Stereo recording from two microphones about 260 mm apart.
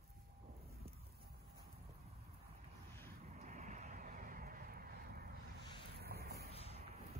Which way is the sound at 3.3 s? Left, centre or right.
Right.